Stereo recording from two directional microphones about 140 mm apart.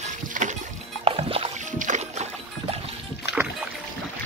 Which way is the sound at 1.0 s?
40° right (ahead or behind).